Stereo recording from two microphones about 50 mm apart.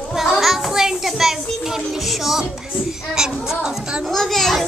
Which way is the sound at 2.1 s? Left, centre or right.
Centre.